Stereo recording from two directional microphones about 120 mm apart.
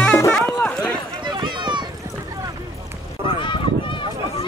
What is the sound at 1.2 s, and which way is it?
Run, 40° right (ahead or behind).